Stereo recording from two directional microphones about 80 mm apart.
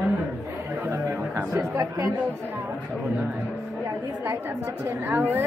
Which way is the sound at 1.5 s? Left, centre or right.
Right.